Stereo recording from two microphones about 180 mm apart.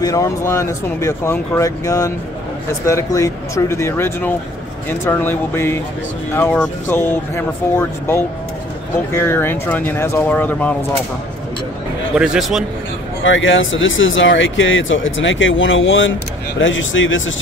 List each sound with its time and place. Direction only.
0.0 s speech: 20° left (ahead or behind)
12.2 s speech: centre (ahead or behind)
13.2 s speech: 90° left